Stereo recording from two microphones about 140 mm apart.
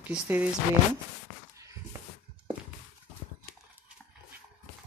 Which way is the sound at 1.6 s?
20° right (ahead or behind).